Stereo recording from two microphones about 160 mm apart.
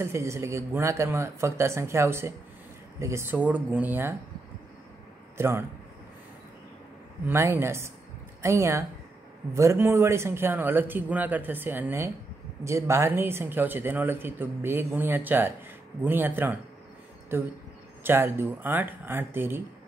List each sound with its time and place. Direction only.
0.0 s speech: 15° right (ahead or behind)
5.4 s speech: 15° right (ahead or behind)
7.2 s speech: 15° right (ahead or behind)